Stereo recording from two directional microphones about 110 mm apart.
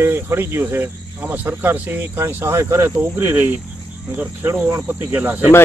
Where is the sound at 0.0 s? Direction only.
20° right (ahead or behind).